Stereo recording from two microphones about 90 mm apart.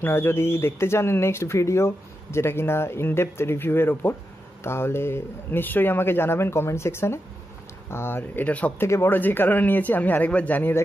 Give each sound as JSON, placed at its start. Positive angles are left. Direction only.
{"t": 0.0, "sound": "speech", "side_deg": 25}
{"t": 8.8, "sound": "speech", "side_deg": 30}